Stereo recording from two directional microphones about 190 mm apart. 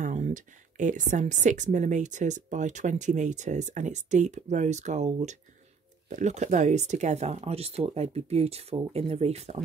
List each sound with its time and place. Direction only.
0.0 s speech: 40° right (ahead or behind)